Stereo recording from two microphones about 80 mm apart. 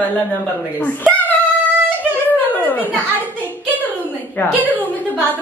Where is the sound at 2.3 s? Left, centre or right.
Left.